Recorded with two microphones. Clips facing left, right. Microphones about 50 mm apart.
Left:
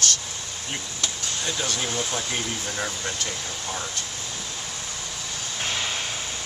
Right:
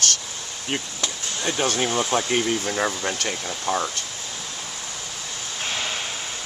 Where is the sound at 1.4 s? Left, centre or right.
Right.